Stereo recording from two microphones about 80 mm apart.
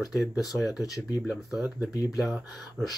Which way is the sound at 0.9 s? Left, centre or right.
Left.